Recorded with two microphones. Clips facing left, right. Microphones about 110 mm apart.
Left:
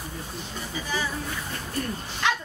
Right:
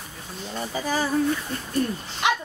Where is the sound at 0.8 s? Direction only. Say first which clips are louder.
Right 7 dB; 45° right (ahead or behind).